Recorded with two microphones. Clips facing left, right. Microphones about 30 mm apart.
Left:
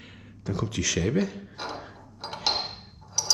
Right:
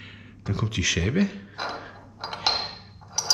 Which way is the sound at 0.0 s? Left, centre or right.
Centre.